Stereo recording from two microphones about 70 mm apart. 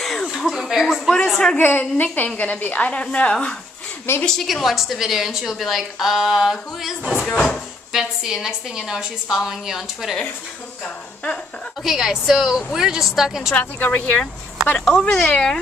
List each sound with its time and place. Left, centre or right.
0.0 s a sound: centre
1.1 s a man's voice: centre
1.6 s a woman's voice: left; by 4.5 s centre
4.5 s a woman's voice: centre
11.8 s a woman's voice: centre
13.6 s a woman's voice: left
15.0 s a woman's voice: centre